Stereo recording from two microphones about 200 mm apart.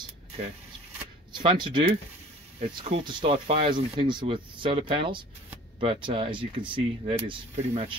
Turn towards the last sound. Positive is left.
turn(degrees=-30)  # may be behind; listen again after turning